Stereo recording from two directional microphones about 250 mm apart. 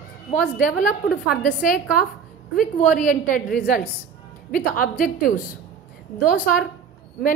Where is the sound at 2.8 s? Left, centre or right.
Left.